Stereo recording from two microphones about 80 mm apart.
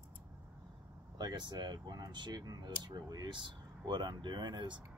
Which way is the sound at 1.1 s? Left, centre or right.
Right.